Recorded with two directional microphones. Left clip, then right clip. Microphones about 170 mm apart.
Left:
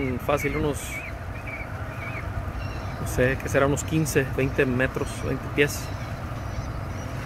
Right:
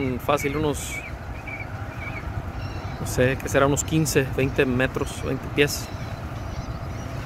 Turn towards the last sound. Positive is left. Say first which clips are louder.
# right 1 dB
turn(degrees=-20)  # may be behind; listen again after turning